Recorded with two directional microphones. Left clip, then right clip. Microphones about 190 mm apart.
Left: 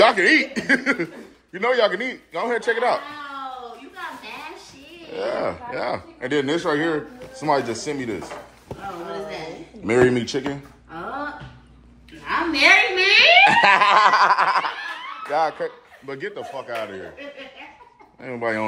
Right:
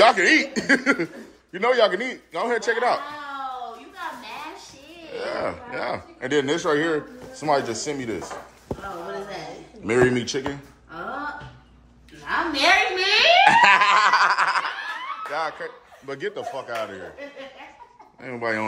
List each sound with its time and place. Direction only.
0.0 s a man's voice: 20° right (ahead or behind)
0.5 s a man's voice: 30° right (ahead or behind)
5.1 s speech: 5° right (ahead or behind)
9.8 s speech: 10° right (ahead or behind)
12.3 s speech: 15° right (ahead or behind)
16.1 s a man's voice: 20° right (ahead or behind)
18.2 s speech: 10° right (ahead or behind)